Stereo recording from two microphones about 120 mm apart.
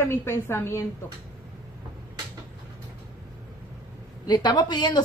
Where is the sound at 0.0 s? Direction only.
20° left (ahead or behind).